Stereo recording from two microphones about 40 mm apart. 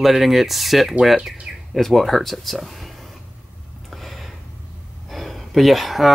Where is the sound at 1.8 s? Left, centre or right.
Centre.